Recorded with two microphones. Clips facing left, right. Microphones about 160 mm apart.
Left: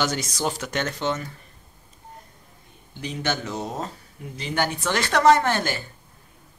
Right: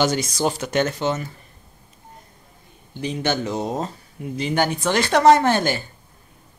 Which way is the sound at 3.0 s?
20° right (ahead or behind).